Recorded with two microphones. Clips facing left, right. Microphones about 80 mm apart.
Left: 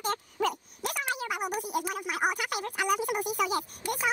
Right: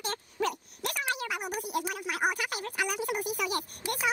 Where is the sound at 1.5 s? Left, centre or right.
Centre.